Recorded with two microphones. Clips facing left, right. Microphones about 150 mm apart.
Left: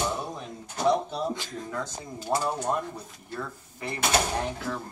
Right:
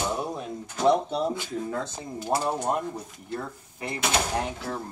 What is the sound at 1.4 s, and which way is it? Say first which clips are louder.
Speech: right 6 dB; 10° right (ahead or behind).